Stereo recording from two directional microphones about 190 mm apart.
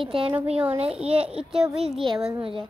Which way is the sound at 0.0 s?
30° right (ahead or behind).